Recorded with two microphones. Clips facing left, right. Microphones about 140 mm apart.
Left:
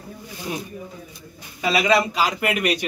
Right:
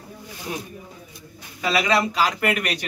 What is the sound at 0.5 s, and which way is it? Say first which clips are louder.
A man's voice: left 2 dB; 15° left (ahead or behind).